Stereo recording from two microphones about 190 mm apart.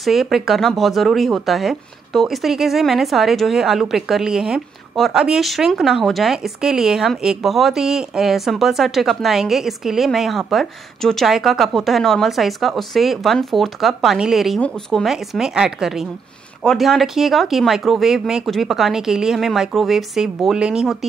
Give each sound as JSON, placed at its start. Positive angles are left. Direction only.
{"t": 0.0, "sound": "speech", "side_deg": 0}